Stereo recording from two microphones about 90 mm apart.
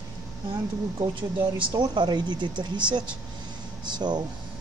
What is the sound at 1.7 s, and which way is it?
Speech, 55° right (ahead or behind).